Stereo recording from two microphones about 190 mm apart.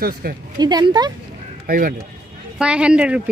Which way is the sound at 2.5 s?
5° right (ahead or behind).